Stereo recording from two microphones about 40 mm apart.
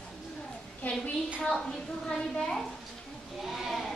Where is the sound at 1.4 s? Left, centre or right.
Centre.